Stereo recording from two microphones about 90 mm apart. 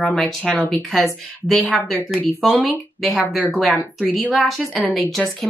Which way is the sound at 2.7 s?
Centre (ahead or behind).